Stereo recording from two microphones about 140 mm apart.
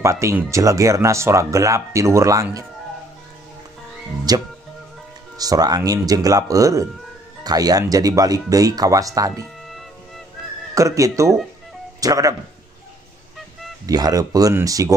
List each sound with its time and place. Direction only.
0.0 s speech: 20° right (ahead or behind)
4.3 s speech: 30° right (ahead or behind)
9.7 s music: centre (ahead or behind)
10.7 s speech: 25° right (ahead or behind)
13.8 s speech: 25° right (ahead or behind)